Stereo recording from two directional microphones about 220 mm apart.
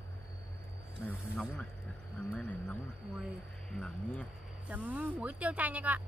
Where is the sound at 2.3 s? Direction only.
5° left (ahead or behind).